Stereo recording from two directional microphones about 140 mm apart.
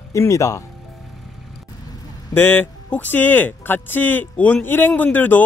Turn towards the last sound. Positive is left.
turn(degrees=15)  # may be behind; listen again after turning